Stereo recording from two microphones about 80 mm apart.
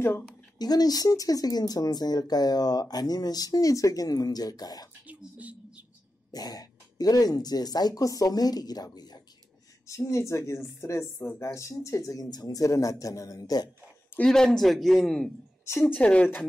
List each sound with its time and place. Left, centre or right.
0.6 s speech: left
5.0 s a sound: centre
6.3 s speech: left
9.8 s a man's voice: left
14.2 s a man's voice: centre
15.8 s speech: centre